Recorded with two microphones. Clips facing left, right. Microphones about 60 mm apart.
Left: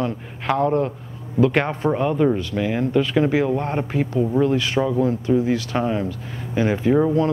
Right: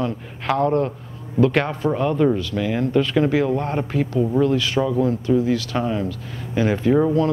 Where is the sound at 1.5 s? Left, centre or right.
Left.